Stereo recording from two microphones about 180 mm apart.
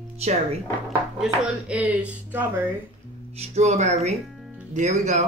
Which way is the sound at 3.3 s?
35° right (ahead or behind).